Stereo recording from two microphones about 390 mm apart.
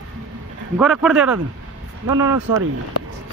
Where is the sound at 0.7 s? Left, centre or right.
Centre.